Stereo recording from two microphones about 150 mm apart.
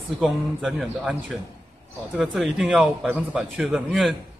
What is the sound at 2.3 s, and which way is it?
Speech, 5° right (ahead or behind).